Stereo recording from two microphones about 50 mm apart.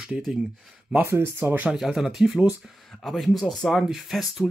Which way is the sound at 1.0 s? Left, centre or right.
Right.